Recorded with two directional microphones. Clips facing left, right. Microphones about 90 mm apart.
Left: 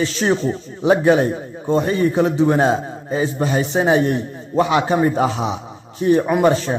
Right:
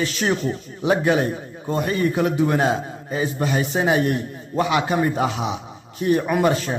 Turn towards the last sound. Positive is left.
turn(degrees=30)  # may be behind; listen again after turning